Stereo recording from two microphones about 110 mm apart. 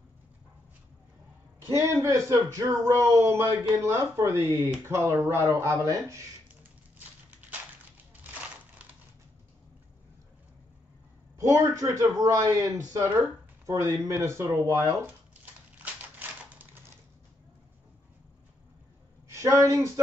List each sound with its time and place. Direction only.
1.7 s speech: 30° right (ahead or behind)
11.3 s a man's voice: 30° right (ahead or behind)
15.8 s typewriter: 15° right (ahead or behind)
19.3 s speech: 30° right (ahead or behind)